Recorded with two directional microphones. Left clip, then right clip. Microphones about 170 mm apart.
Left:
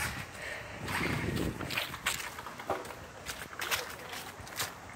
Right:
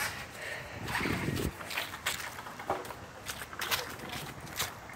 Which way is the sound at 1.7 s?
15° right (ahead or behind).